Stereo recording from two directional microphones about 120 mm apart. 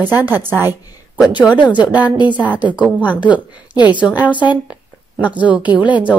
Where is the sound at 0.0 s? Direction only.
15° right (ahead or behind).